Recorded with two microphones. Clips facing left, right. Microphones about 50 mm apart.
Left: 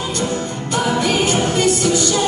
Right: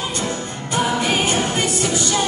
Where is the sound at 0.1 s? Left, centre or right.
Right.